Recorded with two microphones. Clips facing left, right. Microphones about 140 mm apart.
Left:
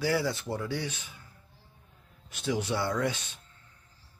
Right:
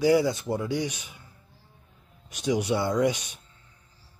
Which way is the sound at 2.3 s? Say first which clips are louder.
Right 5 dB; 15° right (ahead or behind).